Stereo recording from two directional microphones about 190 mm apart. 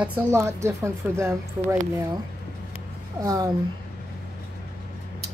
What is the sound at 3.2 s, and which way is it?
Speech, 15° right (ahead or behind).